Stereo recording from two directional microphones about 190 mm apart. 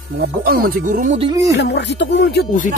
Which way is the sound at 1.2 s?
20° right (ahead or behind).